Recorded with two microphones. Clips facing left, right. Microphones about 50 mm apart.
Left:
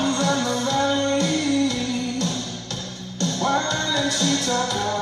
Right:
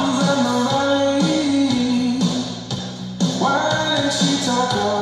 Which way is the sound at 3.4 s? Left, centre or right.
Right.